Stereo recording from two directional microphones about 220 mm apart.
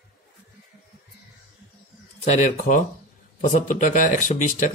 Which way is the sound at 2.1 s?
30° left (ahead or behind).